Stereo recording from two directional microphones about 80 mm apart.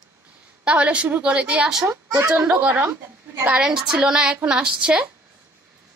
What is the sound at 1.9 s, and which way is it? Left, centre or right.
Speech, right.